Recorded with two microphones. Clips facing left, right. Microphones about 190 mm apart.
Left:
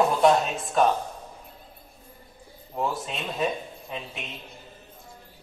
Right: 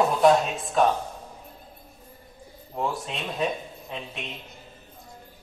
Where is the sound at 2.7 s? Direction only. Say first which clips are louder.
Even; centre (ahead or behind).